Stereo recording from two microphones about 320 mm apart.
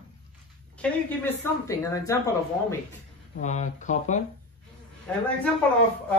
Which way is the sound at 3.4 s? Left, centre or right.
Left.